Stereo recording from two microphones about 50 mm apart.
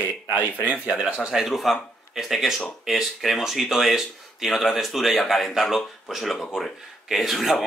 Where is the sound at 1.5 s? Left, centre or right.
Centre.